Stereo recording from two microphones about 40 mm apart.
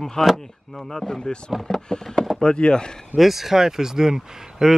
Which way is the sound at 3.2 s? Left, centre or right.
Centre.